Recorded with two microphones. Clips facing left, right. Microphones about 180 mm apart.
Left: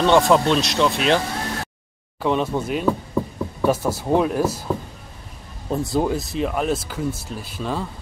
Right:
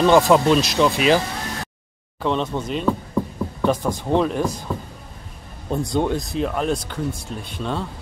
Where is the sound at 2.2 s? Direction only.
10° left (ahead or behind).